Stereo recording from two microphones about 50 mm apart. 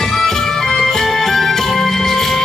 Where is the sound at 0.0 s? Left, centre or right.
Centre.